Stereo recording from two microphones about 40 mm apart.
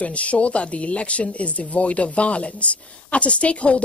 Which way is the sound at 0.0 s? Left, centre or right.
Left.